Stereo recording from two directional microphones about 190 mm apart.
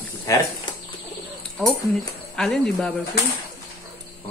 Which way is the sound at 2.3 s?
5° left (ahead or behind).